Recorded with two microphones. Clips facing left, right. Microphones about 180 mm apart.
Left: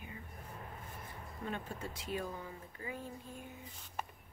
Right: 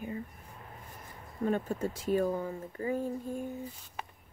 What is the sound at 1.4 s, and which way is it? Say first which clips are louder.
Speech: right 11 dB; 45° right (ahead or behind).